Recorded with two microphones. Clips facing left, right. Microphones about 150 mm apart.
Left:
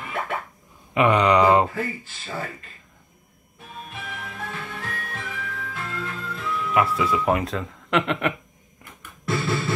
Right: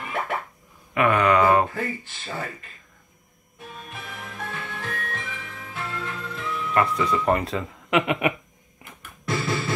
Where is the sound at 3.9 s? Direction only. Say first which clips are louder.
Left 3 dB; centre (ahead or behind).